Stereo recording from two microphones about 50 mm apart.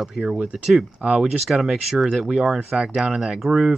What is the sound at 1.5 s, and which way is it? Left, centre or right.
Speech, centre.